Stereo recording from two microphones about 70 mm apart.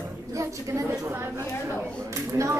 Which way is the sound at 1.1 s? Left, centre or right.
Right.